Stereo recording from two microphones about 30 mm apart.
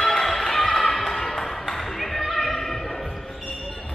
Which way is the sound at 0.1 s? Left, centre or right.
Centre.